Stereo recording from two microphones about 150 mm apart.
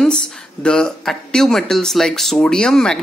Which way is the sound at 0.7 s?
5° left (ahead or behind).